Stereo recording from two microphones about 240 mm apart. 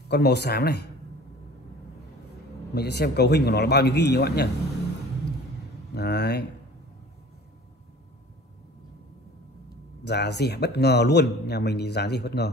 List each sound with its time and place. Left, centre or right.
0.1 s speech: left
2.7 s speech: left
5.9 s speech: left
10.0 s speech: left